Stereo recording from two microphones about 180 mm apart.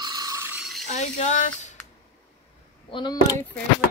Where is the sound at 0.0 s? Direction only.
20° right (ahead or behind).